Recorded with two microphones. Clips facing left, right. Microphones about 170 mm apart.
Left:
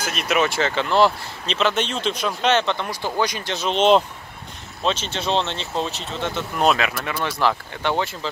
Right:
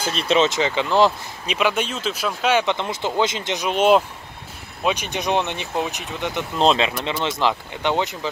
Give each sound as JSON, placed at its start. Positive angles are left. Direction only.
{"t": 0.0, "sound": "speech", "side_deg": -30}